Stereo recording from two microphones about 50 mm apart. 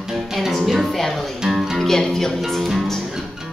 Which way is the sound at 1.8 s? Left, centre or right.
Centre.